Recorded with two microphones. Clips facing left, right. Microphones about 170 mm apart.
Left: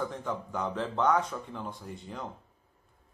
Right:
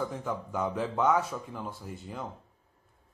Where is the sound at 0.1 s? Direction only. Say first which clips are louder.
Right 1 dB; 5° right (ahead or behind).